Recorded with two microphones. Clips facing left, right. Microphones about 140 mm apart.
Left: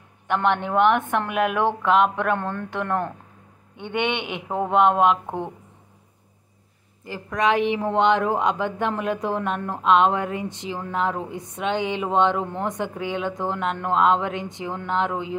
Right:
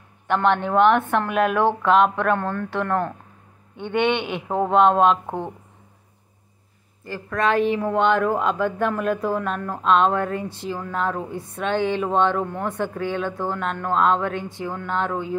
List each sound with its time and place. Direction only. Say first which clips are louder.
0.3 s speech: right 2 dB; 15° left (ahead or behind)
5.2 s speech: right 1 dB; 15° right (ahead or behind)
7.1 s speech: even; 15° left (ahead or behind)